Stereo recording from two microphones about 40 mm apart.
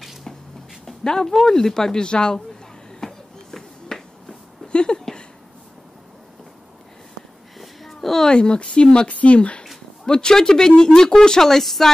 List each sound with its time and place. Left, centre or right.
0.8 s speech: centre
3.0 s finger snapping: centre
4.7 s a sound: left
7.5 s a sound: centre
8.3 s speech: left
10.0 s speech: centre